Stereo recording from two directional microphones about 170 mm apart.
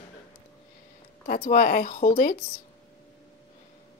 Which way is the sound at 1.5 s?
55° left (ahead or behind).